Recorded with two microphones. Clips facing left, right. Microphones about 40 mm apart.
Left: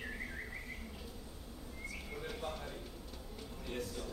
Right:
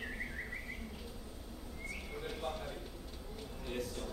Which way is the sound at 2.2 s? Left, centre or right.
Centre.